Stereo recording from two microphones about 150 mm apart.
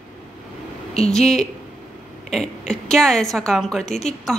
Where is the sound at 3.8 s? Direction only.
50° left (ahead or behind).